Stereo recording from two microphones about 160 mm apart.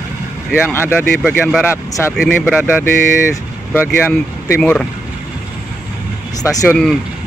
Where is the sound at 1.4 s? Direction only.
Centre (ahead or behind).